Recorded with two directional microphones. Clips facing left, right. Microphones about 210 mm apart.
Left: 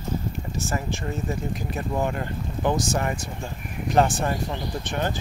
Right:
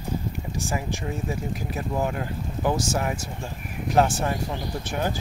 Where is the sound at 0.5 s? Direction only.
15° right (ahead or behind).